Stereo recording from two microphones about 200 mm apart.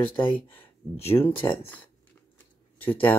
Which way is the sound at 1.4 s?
15° left (ahead or behind).